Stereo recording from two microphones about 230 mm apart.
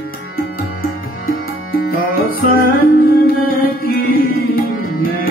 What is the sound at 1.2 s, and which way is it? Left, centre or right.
Music, left.